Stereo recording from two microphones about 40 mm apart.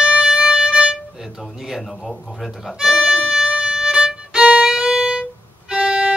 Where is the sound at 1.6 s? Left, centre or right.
Centre.